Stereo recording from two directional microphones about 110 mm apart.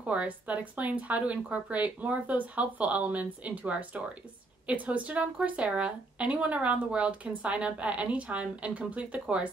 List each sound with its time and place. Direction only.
0.0 s speech: 10° right (ahead or behind)